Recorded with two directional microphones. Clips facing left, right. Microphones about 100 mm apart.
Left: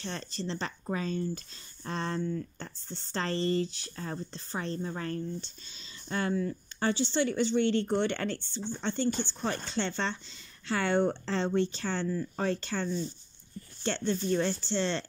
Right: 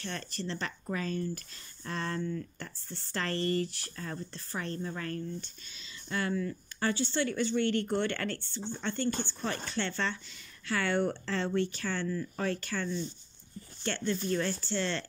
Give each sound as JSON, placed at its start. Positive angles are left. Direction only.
{"t": 0.0, "sound": "speech", "side_deg": 20}